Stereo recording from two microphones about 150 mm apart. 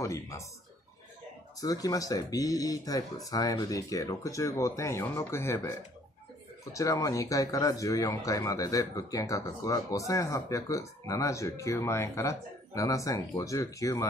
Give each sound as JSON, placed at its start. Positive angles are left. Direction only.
{"t": 0.0, "sound": "speech", "side_deg": 20}
{"t": 1.6, "sound": "speech", "side_deg": 25}